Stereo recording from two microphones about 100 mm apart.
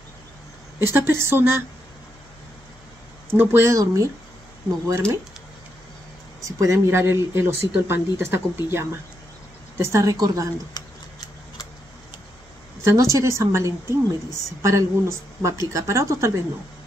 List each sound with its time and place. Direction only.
0.7 s a woman's voice: 25° right (ahead or behind)
3.3 s a woman's voice: 25° right (ahead or behind)
6.4 s a woman's voice: 30° right (ahead or behind)
10.7 s tick-tock: 40° left (ahead or behind)
12.8 s a woman's voice: 30° right (ahead or behind)